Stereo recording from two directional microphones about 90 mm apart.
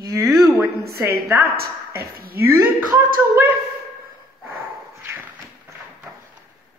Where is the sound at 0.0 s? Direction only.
35° right (ahead or behind).